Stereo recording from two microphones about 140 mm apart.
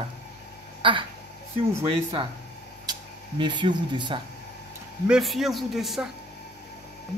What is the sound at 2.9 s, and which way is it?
Speech, 35° right (ahead or behind).